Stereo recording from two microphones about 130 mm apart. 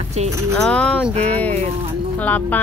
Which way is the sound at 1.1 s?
55° right (ahead or behind).